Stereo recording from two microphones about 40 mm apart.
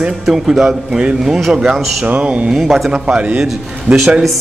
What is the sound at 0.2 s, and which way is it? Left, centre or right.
A man's voice, centre.